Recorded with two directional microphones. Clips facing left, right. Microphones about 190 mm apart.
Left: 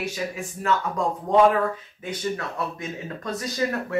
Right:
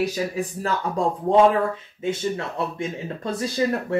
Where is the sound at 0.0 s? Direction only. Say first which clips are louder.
Right 5 dB; 35° right (ahead or behind).